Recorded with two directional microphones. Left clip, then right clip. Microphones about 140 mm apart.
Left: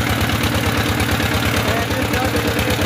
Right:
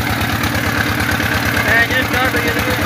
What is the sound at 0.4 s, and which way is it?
Vehicle, 30° left (ahead or behind).